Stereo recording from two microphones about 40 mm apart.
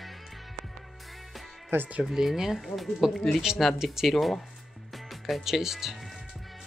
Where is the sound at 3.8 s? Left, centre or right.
Centre.